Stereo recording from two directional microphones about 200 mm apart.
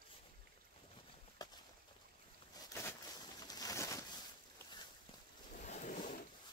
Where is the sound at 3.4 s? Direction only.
20° left (ahead or behind).